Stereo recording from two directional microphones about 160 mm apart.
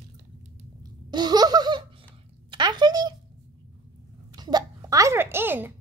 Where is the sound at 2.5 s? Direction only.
30° right (ahead or behind).